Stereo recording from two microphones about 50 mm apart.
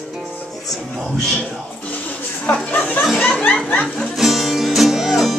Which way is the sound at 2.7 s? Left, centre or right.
Left.